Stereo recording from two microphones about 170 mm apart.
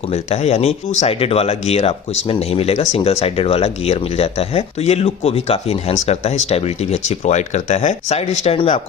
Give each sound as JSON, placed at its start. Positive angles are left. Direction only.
{"t": 0.1, "sound": "speech", "side_deg": 40}